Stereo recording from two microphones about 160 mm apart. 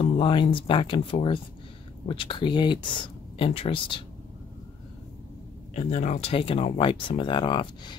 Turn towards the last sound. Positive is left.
turn(degrees=30)  # may be behind; listen again after turning